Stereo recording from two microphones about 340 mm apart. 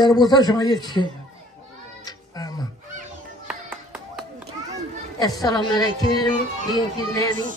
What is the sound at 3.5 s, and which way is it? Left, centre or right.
Music, centre.